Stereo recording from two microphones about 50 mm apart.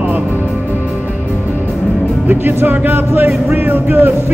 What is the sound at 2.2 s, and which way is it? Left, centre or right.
Speech, right.